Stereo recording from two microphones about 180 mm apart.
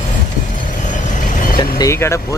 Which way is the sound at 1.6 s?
20° left (ahead or behind).